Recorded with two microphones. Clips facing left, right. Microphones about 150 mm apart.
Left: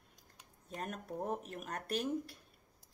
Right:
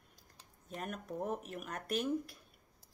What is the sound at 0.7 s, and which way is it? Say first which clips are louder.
Speech: right 1 dB; 40° left (ahead or behind).